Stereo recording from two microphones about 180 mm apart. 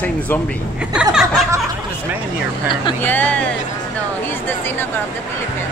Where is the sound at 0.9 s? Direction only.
5° right (ahead or behind).